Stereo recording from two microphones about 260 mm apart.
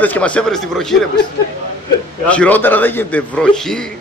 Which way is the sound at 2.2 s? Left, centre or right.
Centre.